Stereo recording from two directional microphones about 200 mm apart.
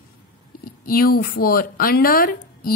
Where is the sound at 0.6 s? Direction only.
45° left (ahead or behind).